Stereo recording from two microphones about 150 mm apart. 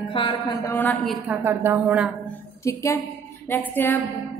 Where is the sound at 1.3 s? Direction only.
15° right (ahead or behind).